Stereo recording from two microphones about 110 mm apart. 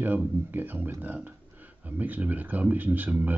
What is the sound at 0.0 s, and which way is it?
Speech, 15° right (ahead or behind).